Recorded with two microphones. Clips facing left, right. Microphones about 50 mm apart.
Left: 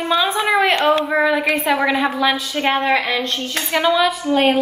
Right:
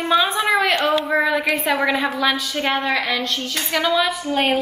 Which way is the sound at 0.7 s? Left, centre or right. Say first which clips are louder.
Left 3 dB; left.